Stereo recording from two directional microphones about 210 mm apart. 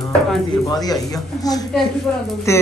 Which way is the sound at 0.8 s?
20° left (ahead or behind).